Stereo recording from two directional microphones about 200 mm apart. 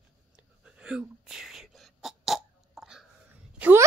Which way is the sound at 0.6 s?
5° right (ahead or behind).